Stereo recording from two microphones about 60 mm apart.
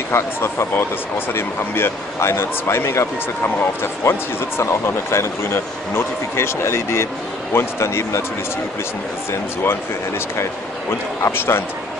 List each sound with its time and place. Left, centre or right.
0.1 s speech: left
4.1 s speech: left
9.3 s speech: left